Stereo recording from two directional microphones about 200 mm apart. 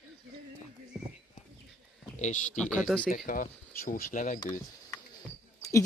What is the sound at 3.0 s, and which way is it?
Speech, 40° left (ahead or behind).